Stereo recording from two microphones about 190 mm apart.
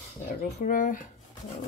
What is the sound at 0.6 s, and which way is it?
Speech, 45° left (ahead or behind).